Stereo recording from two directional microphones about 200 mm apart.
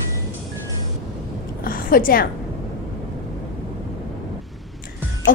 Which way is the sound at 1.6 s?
45° left (ahead or behind).